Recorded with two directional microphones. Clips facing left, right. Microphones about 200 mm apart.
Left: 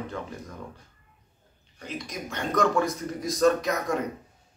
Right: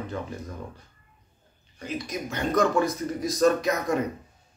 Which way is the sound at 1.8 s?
5° right (ahead or behind).